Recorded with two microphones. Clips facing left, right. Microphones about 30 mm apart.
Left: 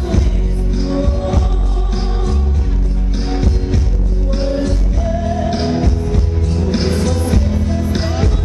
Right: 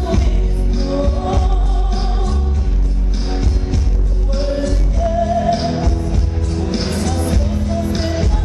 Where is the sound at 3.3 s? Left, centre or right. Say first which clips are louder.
Left 3 dB; centre.